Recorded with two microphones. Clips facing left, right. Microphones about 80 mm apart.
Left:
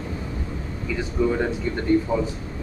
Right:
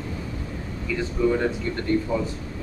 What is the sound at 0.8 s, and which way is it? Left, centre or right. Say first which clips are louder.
Speech: even; centre.